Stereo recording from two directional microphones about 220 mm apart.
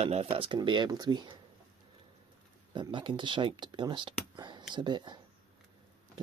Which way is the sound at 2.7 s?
20° right (ahead or behind).